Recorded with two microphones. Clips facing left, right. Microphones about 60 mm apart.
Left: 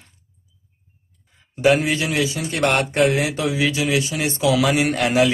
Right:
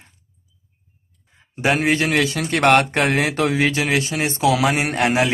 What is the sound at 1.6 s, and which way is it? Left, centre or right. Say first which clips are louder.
Speech: left 1 dB; right.